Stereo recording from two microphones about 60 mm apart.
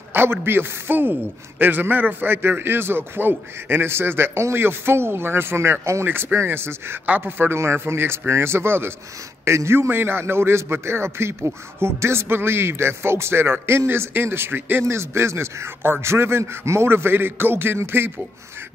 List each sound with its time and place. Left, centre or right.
0.1 s a man's voice: right
6.0 s a man's voice: right